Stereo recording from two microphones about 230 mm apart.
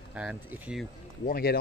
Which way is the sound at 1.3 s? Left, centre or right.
Left.